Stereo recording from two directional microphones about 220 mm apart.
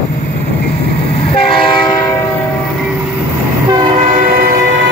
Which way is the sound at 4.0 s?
40° right (ahead or behind).